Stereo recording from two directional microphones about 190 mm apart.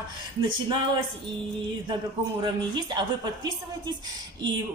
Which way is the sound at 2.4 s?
25° right (ahead or behind).